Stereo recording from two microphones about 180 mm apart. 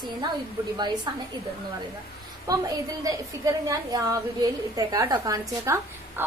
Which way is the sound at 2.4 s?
20° right (ahead or behind).